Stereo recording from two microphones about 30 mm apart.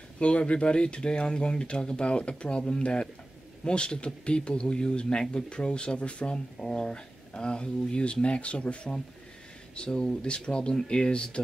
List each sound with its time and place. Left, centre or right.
0.2 s speech: left
5.9 s speech: left
6.3 s speech: left